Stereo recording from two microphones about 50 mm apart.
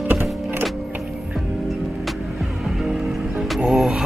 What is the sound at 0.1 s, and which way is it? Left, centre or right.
Music, right.